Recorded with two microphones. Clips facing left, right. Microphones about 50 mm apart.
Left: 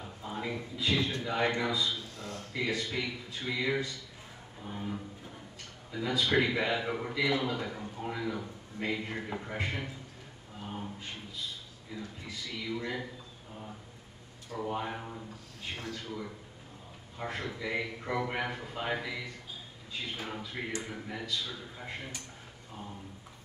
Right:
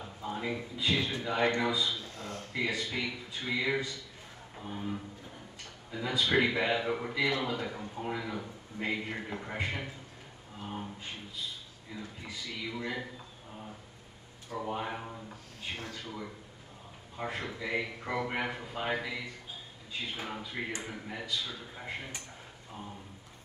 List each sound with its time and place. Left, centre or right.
0.0 s a sound: centre
1.2 s a man's voice: centre
2.1 s a sound: right
2.5 s a man's voice: centre
4.7 s a sound: centre
5.9 s a man's voice: centre
12.0 s a man's voice: centre
14.6 s a man's voice: centre
20.2 s a man's voice: centre